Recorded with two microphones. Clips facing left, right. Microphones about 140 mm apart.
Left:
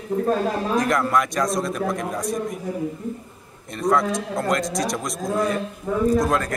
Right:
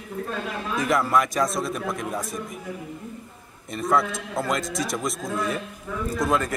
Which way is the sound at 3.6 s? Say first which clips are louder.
Left 3 dB; centre (ahead or behind).